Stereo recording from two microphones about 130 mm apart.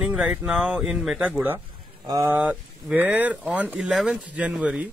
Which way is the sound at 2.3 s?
10° right (ahead or behind).